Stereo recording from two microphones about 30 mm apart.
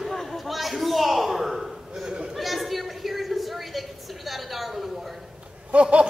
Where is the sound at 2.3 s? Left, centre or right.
Centre.